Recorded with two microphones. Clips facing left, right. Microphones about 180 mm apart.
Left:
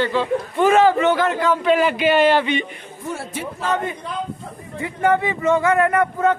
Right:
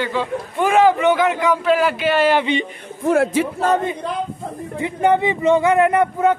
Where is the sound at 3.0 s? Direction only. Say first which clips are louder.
Right 13 dB; 90° right.